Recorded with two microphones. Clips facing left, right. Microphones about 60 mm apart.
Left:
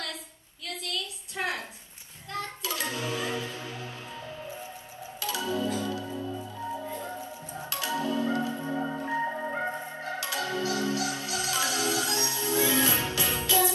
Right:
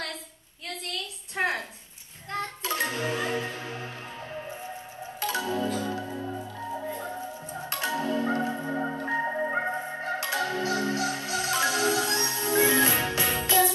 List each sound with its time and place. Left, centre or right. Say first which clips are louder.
0.8 s a sound: left 1 dB; right
2.6 s music: right 5 dB; right
5.2 s music: right 2 dB; right; by 7.2 s centre
7.7 s marimba: right 1 dB; right
8.6 s organ: right 1 dB; right
9.0 s music: right 2 dB; right